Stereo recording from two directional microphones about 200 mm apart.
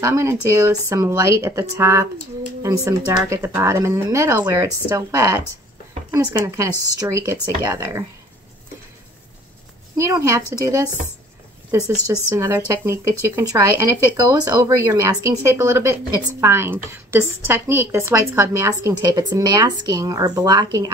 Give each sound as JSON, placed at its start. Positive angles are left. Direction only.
{"t": 0.0, "sound": "speech", "side_deg": -15}
{"t": 9.9, "sound": "speech", "side_deg": -15}
{"t": 12.1, "sound": "speech", "side_deg": -15}